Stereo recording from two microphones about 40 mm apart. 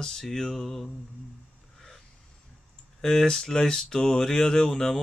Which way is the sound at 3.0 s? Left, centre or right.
Centre.